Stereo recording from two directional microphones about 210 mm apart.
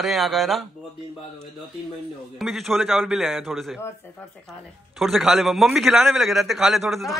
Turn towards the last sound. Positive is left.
turn(degrees=0)  # may be behind; listen again after turning